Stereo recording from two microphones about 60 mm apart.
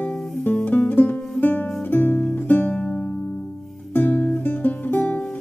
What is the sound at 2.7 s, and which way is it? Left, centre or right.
Music, centre.